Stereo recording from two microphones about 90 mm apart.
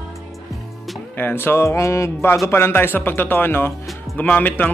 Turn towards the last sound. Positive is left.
turn(degrees=20)  # may be behind; listen again after turning